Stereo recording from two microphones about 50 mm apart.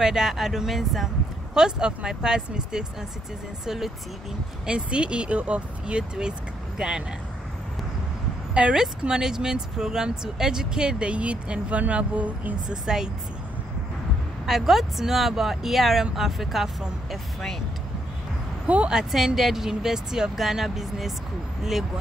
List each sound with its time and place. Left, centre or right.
0.0 s speech: centre
1.5 s speech: centre
4.6 s speech: centre
8.5 s speech: right
12.6 s speech: centre
14.4 s speech: centre
18.9 s speech: centre